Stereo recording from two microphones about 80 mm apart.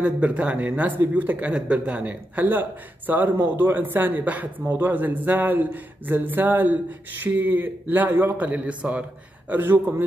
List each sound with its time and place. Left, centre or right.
0.0 s speech: centre